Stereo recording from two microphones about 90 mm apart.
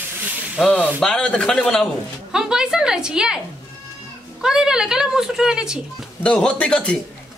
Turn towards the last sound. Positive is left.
turn(degrees=15)  # may be behind; listen again after turning